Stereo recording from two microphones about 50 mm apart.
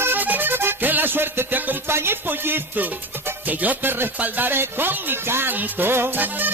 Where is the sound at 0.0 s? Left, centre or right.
Right.